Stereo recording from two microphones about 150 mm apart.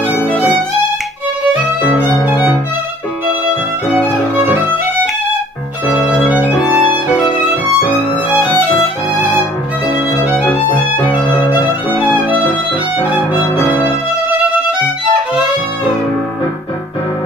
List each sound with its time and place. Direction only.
2.0 s violin: 10° right (ahead or behind)
6.1 s violin: 10° right (ahead or behind)
13.6 s music: 15° left (ahead or behind)